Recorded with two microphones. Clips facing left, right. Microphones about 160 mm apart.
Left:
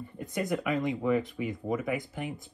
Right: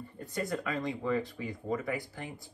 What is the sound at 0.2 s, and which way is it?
Speech, 15° left (ahead or behind).